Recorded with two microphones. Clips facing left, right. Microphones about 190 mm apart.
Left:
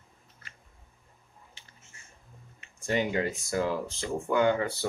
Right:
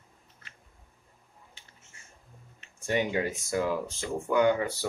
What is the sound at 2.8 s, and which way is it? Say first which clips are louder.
Speech: even; 15° right (ahead or behind).